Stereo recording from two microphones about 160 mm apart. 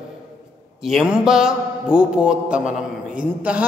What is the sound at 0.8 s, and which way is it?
A man's voice, 5° right (ahead or behind).